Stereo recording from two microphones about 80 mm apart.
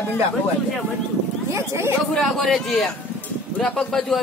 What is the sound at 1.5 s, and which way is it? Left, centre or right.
Speech, right.